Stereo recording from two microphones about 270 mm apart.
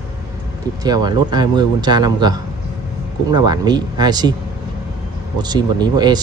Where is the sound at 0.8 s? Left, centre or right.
Centre.